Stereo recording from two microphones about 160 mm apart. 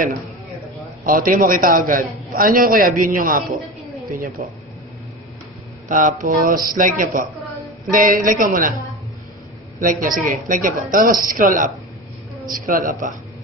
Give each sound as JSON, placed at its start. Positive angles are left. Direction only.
{"t": 1.0, "sound": "a man's voice", "side_deg": -60}
{"t": 5.9, "sound": "a man's voice", "side_deg": -55}
{"t": 9.8, "sound": "a man's voice", "side_deg": -55}